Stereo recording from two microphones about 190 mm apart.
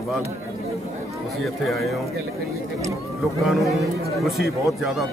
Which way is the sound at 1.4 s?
Centre (ahead or behind).